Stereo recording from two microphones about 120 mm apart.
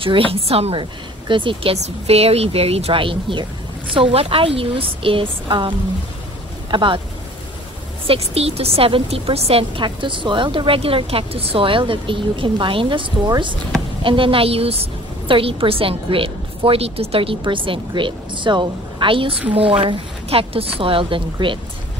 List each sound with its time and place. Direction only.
0.0 s a woman's voice: 50° right (ahead or behind)
1.2 s a woman's voice: 45° right (ahead or behind)
8.1 s a woman's voice: 55° right (ahead or behind)